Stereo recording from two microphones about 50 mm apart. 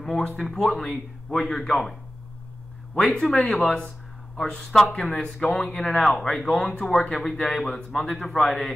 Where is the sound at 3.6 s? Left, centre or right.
Centre.